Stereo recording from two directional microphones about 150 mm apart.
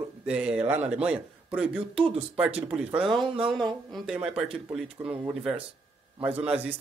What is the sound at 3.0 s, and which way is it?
Speech, 30° right (ahead or behind).